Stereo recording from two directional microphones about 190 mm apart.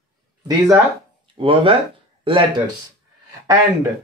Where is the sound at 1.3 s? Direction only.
25° right (ahead or behind).